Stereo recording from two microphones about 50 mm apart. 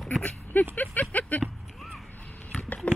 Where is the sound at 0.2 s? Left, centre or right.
Left.